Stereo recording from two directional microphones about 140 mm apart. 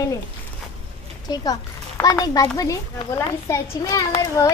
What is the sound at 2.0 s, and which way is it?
A child's voice, 25° left (ahead or behind).